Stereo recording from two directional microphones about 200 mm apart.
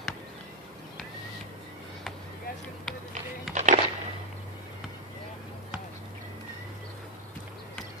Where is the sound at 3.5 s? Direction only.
35° right (ahead or behind).